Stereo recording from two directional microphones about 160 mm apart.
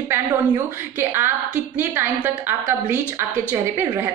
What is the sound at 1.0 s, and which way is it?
A woman's voice, 15° right (ahead or behind).